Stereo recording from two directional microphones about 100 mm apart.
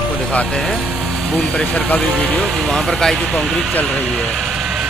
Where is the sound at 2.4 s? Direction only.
Centre (ahead or behind).